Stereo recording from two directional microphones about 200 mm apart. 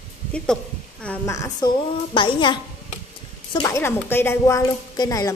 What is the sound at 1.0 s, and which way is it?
A woman's voice, 10° left (ahead or behind).